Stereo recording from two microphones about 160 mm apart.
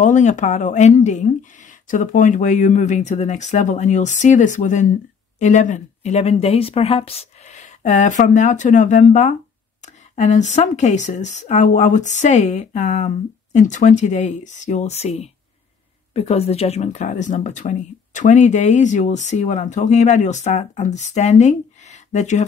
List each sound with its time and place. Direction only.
0.0 s speech: 50° left (ahead or behind)